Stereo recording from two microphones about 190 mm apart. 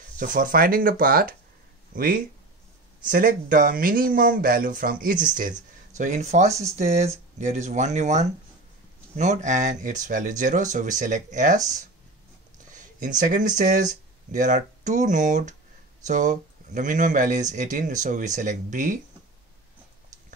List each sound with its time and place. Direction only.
0.2 s speech: 45° right (ahead or behind)